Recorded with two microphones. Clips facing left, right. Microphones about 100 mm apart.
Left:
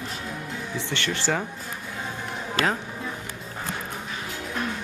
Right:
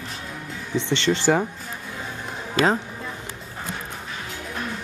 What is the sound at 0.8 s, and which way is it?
Speech, 20° right (ahead or behind).